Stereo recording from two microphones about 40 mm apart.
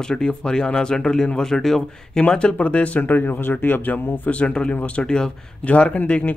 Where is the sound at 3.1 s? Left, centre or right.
Left.